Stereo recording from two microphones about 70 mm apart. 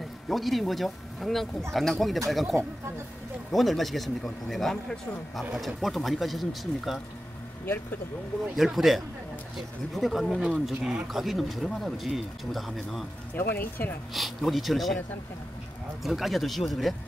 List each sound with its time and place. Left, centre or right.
0.3 s speech: centre
3.5 s speech: centre
7.6 s speech: left
8.5 s speech: centre
13.4 s speech: left
14.1 s speech: centre
16.0 s speech: centre